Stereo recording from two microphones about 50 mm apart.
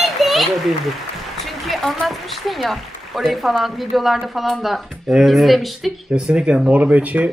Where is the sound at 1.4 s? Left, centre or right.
Centre.